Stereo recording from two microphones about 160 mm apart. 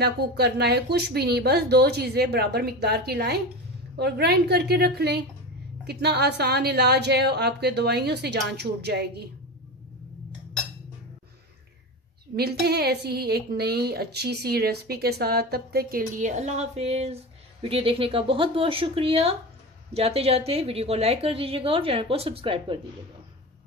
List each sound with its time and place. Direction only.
0.0 s a woman's voice: 90° right
12.4 s a woman's voice: 85° right
16.2 s speech: 50° right (ahead or behind)